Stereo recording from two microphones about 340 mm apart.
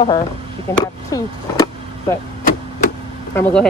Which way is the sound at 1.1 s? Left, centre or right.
Centre.